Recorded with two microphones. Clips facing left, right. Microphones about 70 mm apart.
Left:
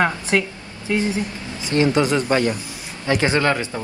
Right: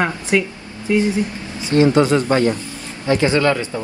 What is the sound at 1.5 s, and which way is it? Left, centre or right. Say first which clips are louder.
Vehicle: right 4 dB; right.